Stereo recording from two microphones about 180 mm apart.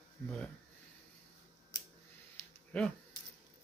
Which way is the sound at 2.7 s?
5° left (ahead or behind).